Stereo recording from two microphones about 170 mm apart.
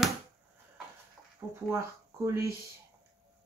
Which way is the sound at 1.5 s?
15° right (ahead or behind).